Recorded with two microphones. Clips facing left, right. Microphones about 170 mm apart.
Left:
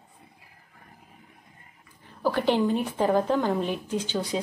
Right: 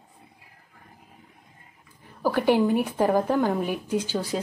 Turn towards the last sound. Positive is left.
turn(degrees=-5)  # may be behind; listen again after turning